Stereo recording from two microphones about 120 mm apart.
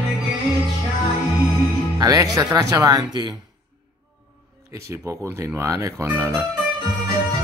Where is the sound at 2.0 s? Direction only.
30° right (ahead or behind).